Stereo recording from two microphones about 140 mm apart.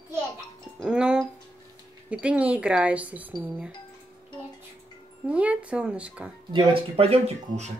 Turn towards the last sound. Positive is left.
turn(degrees=-50)  # may be behind; listen again after turning